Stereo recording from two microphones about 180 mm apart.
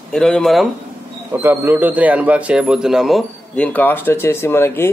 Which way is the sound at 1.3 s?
10° right (ahead or behind).